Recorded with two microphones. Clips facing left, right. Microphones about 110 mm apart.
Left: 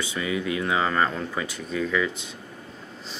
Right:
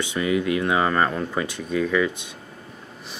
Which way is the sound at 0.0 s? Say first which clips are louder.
Right 5 dB; 20° right (ahead or behind).